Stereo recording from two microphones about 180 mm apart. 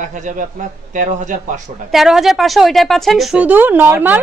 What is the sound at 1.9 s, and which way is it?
Speech, centre (ahead or behind).